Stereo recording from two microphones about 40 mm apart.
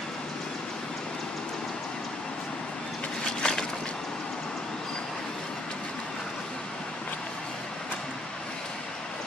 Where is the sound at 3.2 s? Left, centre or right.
Centre.